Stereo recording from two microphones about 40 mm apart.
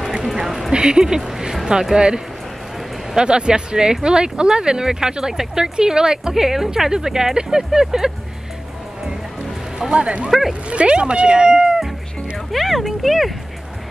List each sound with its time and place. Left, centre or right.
0.0 s a sound: centre
0.7 s speech: centre
9.8 s speech: right
12.5 s speech: centre